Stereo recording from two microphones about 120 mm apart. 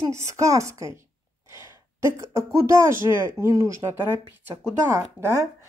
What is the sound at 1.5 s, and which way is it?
Gasp, 25° right (ahead or behind).